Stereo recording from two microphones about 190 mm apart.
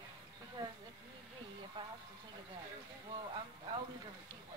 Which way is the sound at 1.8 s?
25° right (ahead or behind).